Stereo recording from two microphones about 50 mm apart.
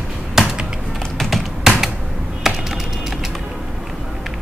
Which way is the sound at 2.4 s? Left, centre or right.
Centre.